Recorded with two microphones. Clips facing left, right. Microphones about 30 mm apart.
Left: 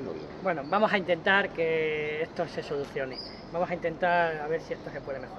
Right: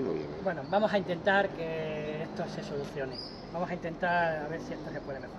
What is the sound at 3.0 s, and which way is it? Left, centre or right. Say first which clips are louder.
Speech: left 2 dB; left.